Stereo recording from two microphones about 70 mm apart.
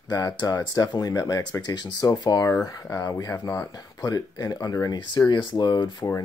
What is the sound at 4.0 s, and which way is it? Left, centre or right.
Speech, left.